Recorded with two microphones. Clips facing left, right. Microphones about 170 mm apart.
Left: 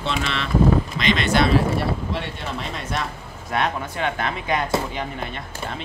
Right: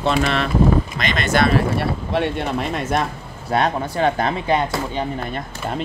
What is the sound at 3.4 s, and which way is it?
Speech, 35° right (ahead or behind).